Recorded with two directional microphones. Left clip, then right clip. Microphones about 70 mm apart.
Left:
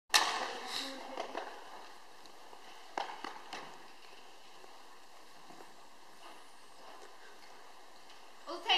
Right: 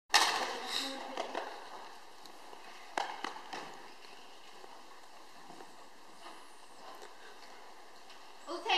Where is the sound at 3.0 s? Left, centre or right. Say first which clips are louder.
Right 3 dB; right.